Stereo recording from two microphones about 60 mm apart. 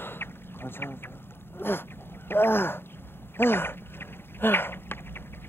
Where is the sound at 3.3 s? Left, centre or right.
Left.